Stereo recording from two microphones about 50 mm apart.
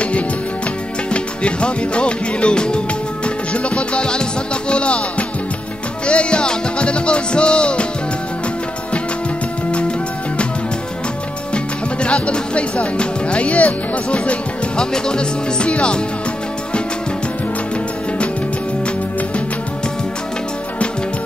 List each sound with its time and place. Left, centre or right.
1.1 s music: left
6.0 s music: left
9.7 s music: left
11.5 s speech: left